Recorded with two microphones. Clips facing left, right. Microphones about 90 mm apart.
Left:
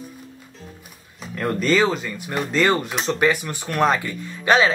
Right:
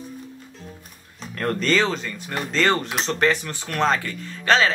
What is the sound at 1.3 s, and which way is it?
Speech, 10° left (ahead or behind).